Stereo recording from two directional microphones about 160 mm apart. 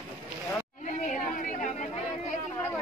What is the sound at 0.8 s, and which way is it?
Chatter, 50° left (ahead or behind).